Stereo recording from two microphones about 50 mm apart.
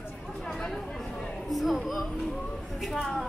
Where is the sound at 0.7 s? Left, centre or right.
Centre.